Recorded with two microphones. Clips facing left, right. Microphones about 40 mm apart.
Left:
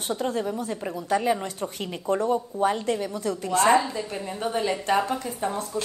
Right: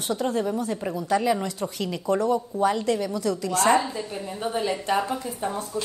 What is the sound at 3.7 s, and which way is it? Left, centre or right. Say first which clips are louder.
A woman's voice: left 1 dB; centre.